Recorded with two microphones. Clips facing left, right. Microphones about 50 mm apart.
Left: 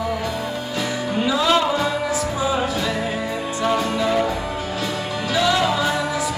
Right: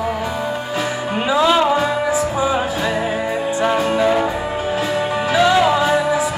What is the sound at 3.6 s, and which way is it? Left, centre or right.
Music, right.